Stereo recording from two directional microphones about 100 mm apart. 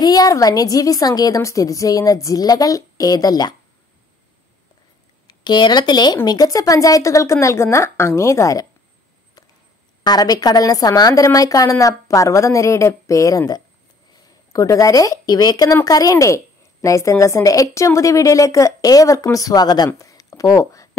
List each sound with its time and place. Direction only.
0.0 s a woman's voice: 40° left (ahead or behind)
5.2 s a woman's voice: 45° left (ahead or behind)
10.0 s a woman's voice: 40° left (ahead or behind)
19.9 s a sound: 35° left (ahead or behind)